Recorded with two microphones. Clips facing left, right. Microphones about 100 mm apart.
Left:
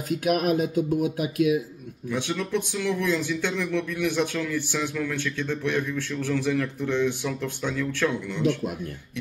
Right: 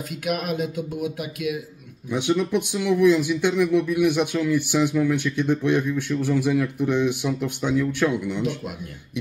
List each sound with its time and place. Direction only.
0.1 s speech: 40° left (ahead or behind)
2.0 s speech: 15° right (ahead or behind)